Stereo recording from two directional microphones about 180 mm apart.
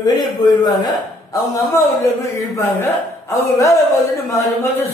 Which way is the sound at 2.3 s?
15° left (ahead or behind).